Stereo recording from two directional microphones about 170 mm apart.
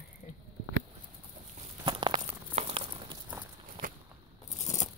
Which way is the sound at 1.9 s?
30° right (ahead or behind).